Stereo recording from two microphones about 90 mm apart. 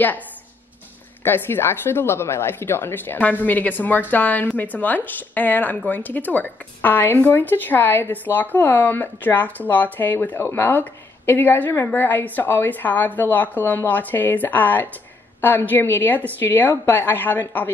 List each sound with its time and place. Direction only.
1.2 s a woman's voice: 25° left (ahead or behind)